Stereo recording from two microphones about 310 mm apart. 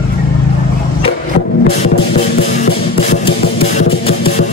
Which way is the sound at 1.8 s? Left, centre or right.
Left.